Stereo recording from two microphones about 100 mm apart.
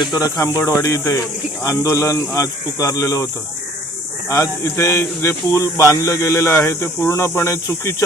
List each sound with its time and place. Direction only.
0.0 s speech: 45° left (ahead or behind)
0.6 s a man's voice: 30° left (ahead or behind)
4.3 s a man's voice: 30° left (ahead or behind)